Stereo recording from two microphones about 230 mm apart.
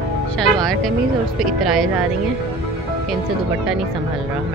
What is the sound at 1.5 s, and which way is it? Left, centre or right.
Speech, centre.